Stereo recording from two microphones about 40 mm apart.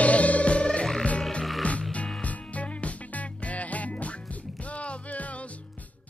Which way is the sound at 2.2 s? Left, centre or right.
Left.